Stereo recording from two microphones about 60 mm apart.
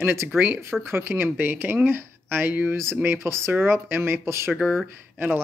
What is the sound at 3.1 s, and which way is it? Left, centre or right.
Speech, right.